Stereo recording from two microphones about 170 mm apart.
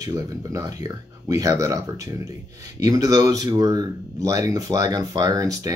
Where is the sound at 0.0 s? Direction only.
20° right (ahead or behind).